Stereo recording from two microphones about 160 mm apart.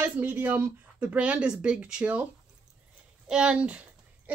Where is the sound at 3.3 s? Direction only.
5° right (ahead or behind).